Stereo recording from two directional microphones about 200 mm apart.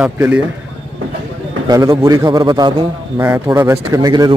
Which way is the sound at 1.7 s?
20° right (ahead or behind).